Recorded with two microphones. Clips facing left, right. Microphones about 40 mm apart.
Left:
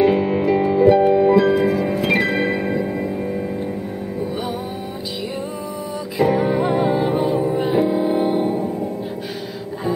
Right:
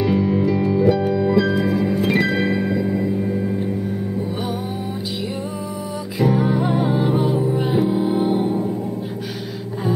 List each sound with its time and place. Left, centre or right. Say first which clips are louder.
0.0 s music: left 2 dB; left
2.5 s music: even; left
6.1 s music: left 1 dB; centre